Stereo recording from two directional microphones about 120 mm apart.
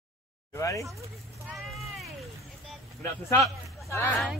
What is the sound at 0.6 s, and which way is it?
Speech, 25° left (ahead or behind).